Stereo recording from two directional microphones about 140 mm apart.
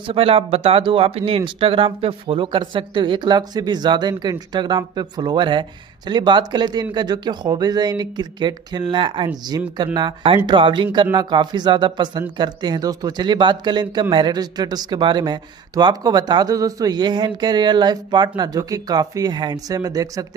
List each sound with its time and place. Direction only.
0.0 s a man's voice: 40° right (ahead or behind); by 20.2 s 25° right (ahead or behind)